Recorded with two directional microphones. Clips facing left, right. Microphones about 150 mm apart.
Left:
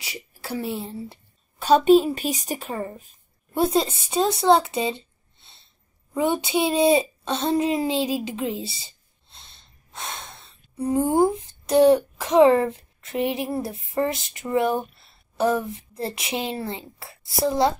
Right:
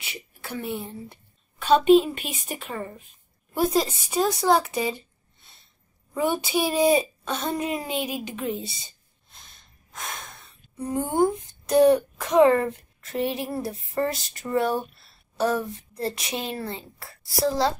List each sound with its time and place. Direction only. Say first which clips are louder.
0.0 s a woman's voice: left 2 dB; 30° left (ahead or behind)
3.5 s a child's voice: left 2 dB; 25° left (ahead or behind)